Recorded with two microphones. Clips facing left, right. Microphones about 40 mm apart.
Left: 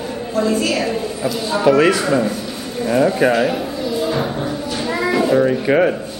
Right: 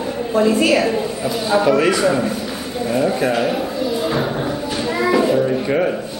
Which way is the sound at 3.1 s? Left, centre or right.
Centre.